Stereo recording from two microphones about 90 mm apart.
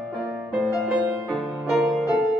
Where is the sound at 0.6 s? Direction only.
15° left (ahead or behind).